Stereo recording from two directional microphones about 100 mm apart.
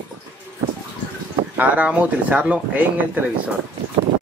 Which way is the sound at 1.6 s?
10° right (ahead or behind).